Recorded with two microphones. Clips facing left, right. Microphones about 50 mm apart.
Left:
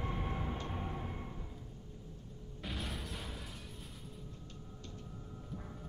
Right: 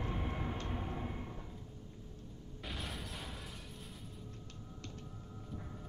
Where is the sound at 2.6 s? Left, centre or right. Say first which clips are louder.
Left 2 dB; centre.